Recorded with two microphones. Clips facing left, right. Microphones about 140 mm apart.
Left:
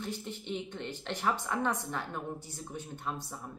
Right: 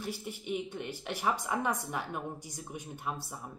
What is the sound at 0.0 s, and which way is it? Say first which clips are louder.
A woman's voice: even; 10° right (ahead or behind).